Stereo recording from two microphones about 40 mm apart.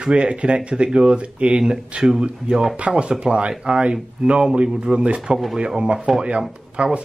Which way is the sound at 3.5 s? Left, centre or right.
Centre.